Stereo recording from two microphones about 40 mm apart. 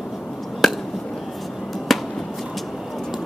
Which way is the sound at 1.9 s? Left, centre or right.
Centre.